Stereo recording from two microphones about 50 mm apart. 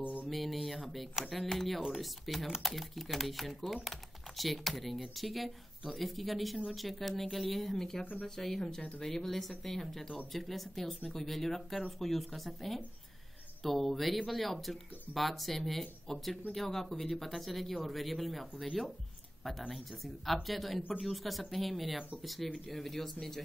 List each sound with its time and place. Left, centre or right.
0.3 s speech: centre
2.4 s speech: centre
8.0 s speech: left
8.4 s speech: centre
19.7 s speech: centre